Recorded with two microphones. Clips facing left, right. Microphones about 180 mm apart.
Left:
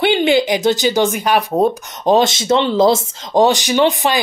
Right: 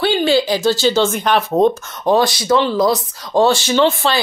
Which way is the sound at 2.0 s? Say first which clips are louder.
Left 1 dB; 20° left (ahead or behind).